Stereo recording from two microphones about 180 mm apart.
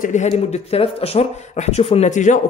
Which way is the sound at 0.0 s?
40° left (ahead or behind).